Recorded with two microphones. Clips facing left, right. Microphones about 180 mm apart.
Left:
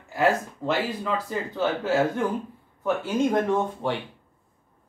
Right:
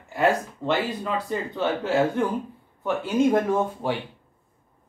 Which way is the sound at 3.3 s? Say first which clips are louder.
Right 1 dB; 5° right (ahead or behind).